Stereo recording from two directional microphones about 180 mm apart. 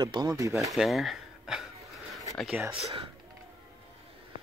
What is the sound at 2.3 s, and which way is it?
Speech, centre (ahead or behind).